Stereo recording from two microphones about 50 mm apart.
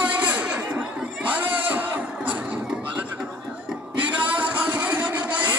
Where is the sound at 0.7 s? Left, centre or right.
Right.